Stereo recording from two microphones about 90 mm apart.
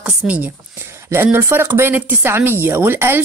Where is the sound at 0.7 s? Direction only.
30° right (ahead or behind).